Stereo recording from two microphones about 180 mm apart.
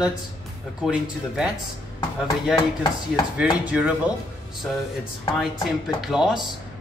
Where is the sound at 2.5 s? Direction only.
20° left (ahead or behind).